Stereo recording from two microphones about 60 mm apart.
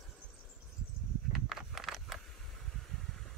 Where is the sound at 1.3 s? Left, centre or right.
Centre.